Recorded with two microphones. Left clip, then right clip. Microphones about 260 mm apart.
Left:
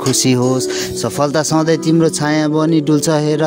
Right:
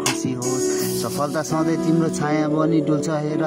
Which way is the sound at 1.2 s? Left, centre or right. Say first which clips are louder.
Left 9 dB; left.